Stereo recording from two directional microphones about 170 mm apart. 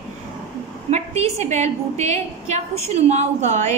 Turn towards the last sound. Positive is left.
turn(degrees=-40)  # may be behind; listen again after turning